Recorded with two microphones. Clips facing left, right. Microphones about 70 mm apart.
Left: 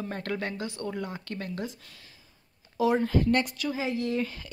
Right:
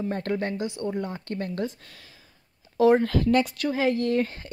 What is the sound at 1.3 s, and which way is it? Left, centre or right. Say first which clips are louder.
Speech: right 5 dB; right.